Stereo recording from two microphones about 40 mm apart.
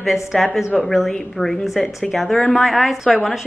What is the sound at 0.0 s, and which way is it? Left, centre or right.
Speech, centre.